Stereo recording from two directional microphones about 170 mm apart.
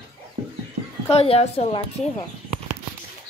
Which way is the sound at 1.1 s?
35° left (ahead or behind).